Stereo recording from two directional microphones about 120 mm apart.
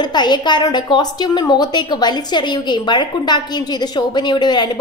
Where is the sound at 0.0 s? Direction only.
35° left (ahead or behind).